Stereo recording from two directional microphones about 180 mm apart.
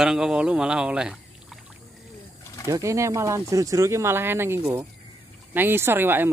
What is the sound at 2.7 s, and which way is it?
Speech, 15° right (ahead or behind).